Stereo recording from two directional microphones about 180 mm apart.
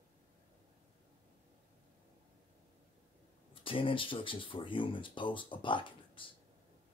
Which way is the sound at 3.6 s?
30° left (ahead or behind).